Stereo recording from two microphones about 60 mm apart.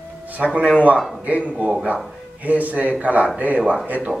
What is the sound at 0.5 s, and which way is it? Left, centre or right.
Speech, centre.